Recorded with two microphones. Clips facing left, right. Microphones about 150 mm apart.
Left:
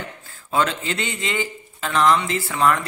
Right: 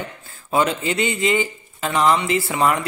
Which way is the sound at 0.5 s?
10° right (ahead or behind).